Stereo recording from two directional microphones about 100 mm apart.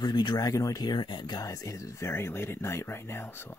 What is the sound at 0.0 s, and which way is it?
Speech, 50° left (ahead or behind).